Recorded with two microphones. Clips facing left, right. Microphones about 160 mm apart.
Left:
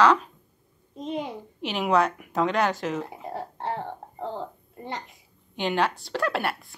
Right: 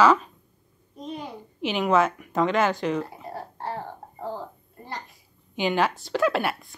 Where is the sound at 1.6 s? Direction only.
Centre (ahead or behind).